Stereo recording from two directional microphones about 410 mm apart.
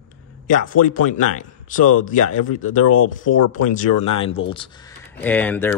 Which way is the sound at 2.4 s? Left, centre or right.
Left.